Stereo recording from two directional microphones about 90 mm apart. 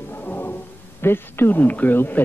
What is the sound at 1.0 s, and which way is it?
A man's voice, 25° left (ahead or behind).